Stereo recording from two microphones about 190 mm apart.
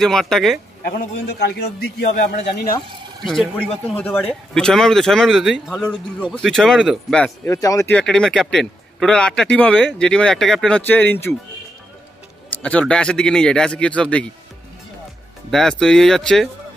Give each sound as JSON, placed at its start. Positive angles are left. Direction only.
{"t": 0.0, "sound": "speech", "side_deg": 0}
{"t": 0.8, "sound": "a man's voice", "side_deg": 60}
{"t": 3.3, "sound": "speech", "side_deg": 5}
{"t": 7.4, "sound": "speech", "side_deg": 15}
{"t": 8.0, "sound": "speech", "side_deg": 5}
{"t": 12.6, "sound": "speech", "side_deg": 5}
{"t": 15.5, "sound": "speech", "side_deg": 0}